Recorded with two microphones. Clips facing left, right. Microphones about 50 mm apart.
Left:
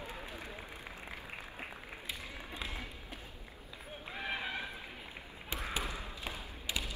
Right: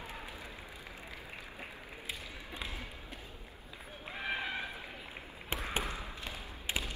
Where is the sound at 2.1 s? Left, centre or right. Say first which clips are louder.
Even; centre.